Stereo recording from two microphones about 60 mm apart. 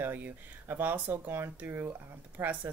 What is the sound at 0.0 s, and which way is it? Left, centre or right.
A woman's voice, right.